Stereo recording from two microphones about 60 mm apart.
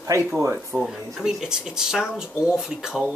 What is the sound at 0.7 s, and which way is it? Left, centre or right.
Speech, centre.